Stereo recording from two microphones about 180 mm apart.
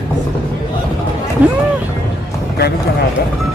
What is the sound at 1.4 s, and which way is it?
Speech, 10° right (ahead or behind).